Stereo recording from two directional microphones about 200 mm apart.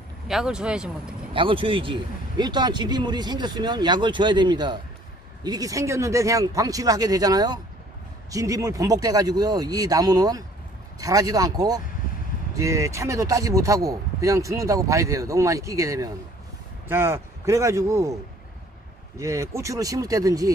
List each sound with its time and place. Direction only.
0.3 s speech: 5° right (ahead or behind)
1.3 s speech: 25° right (ahead or behind)
19.1 s speech: 15° right (ahead or behind)